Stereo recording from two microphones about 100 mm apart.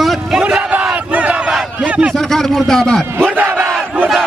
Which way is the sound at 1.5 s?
10° right (ahead or behind).